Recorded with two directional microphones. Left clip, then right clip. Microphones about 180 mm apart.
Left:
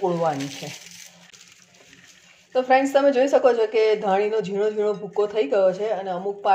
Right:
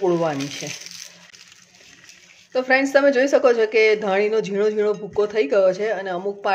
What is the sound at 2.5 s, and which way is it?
A woman's voice, 15° right (ahead or behind).